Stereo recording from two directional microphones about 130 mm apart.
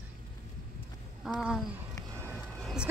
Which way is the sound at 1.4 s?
5° right (ahead or behind).